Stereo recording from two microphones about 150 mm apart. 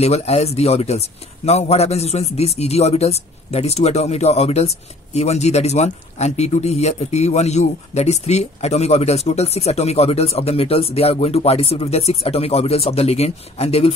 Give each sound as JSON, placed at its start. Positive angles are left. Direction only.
{"t": 0.0, "sound": "speech", "side_deg": 45}